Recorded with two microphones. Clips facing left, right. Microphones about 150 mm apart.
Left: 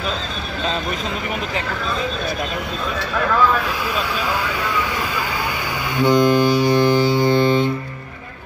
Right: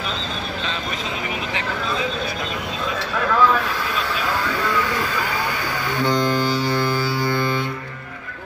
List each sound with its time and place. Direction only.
5.9 s music: 15° left (ahead or behind)